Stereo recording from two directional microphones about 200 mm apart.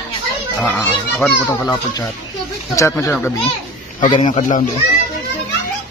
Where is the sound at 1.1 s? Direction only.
5° left (ahead or behind).